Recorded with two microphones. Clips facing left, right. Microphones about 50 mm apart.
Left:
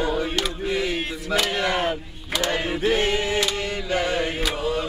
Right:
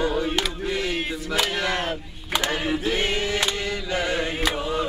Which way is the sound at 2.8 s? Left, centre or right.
Left.